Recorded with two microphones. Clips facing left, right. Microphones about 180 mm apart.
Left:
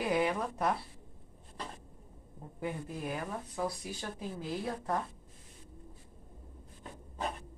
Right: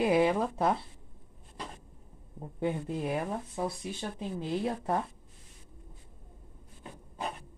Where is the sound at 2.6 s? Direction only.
25° right (ahead or behind).